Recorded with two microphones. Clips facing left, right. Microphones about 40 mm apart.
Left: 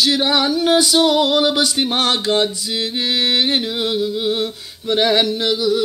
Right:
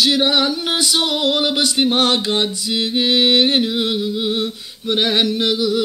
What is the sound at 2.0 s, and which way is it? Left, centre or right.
Speech, right.